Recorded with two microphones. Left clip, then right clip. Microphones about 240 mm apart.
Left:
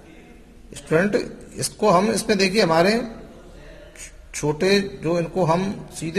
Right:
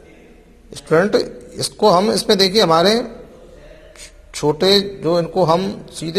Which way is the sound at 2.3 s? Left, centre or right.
Centre.